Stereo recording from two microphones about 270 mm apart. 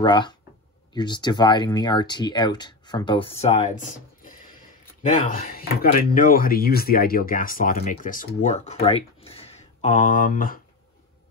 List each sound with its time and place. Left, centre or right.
0.0 s speech: centre